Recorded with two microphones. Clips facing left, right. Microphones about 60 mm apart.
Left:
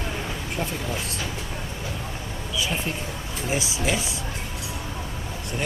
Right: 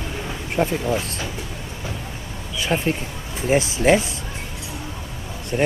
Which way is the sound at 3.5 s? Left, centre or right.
Right.